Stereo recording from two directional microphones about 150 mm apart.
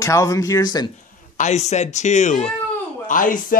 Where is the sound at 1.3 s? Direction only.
50° left (ahead or behind).